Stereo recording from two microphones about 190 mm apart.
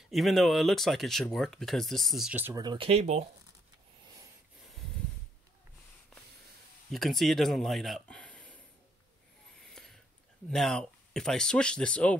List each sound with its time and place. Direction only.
0.1 s speech: centre (ahead or behind)
2.6 s speech: 25° right (ahead or behind)
6.9 s speech: centre (ahead or behind)
9.6 s a sound: centre (ahead or behind)
10.5 s speech: 5° left (ahead or behind)